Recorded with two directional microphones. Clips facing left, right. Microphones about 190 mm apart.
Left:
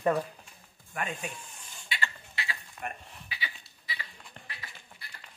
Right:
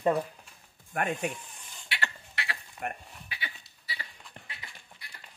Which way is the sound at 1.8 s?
70° right (ahead or behind).